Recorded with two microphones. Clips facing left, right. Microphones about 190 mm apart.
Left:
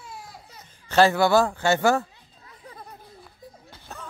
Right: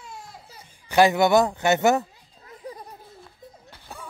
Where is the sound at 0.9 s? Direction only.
15° right (ahead or behind).